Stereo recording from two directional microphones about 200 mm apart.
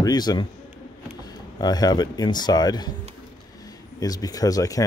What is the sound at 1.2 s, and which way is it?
Speech, 20° left (ahead or behind).